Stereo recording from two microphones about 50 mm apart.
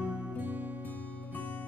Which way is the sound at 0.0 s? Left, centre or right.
Right.